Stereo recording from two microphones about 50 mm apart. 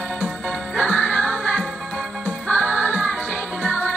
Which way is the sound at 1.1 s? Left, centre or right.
Left.